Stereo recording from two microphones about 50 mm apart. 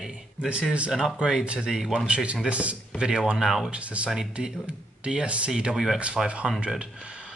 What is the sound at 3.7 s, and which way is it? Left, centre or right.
Speech, right.